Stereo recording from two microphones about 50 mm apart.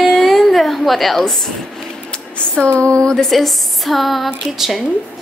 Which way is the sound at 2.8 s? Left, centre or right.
Centre.